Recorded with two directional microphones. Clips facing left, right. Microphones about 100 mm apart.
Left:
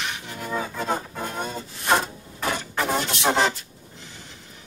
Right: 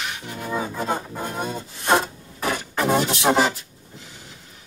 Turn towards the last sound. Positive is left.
turn(degrees=-5)  # may be behind; listen again after turning